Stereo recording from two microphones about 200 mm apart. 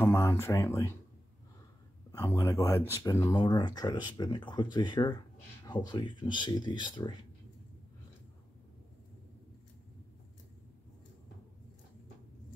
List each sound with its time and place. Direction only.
0.0 s speech: 15° left (ahead or behind)
2.1 s speech: 15° left (ahead or behind)